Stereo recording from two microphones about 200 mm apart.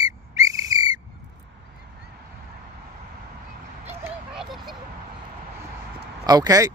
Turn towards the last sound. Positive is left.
turn(degrees=-15)  # may be behind; listen again after turning